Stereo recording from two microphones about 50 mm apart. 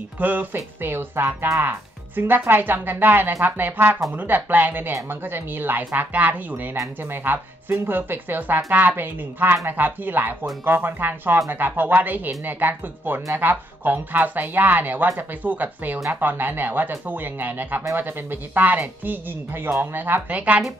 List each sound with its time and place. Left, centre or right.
0.2 s speech: right
0.7 s speech: right
20.2 s speech: right